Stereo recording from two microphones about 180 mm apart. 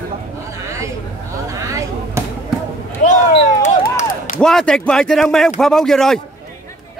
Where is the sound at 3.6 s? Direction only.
50° left (ahead or behind).